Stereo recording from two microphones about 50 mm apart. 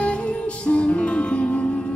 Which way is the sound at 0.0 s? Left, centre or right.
Left.